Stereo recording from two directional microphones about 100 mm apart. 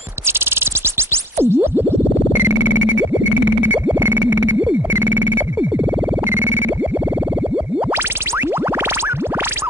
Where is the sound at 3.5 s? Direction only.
20° right (ahead or behind).